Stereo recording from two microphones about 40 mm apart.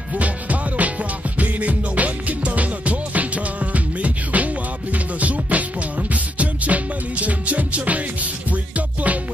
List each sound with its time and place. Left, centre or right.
0.1 s music: right